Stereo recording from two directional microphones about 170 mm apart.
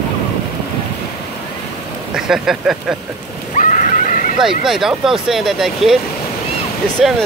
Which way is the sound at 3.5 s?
50° left (ahead or behind).